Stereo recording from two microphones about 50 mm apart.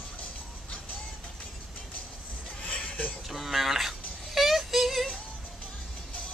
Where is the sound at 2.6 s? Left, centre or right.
Left.